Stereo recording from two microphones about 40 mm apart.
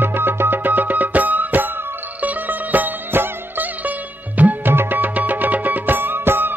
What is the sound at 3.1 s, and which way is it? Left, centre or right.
Music, right.